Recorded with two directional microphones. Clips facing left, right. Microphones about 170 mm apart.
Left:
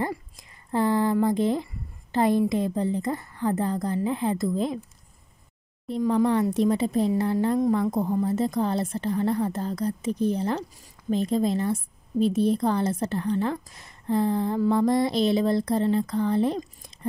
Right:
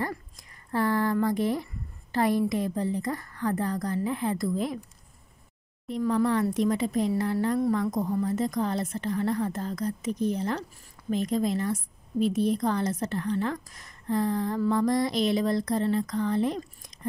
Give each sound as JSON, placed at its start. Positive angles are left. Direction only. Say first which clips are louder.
{"t": 0.7, "sound": "a woman's voice", "louder": "left 3 dB", "side_deg": 20}
{"t": 5.9, "sound": "a woman's voice", "louder": "left 3 dB", "side_deg": 35}